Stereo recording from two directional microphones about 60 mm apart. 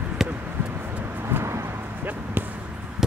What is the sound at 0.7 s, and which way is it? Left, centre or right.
Vehicle, right.